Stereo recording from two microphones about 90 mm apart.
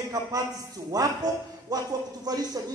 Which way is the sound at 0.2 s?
45° right (ahead or behind).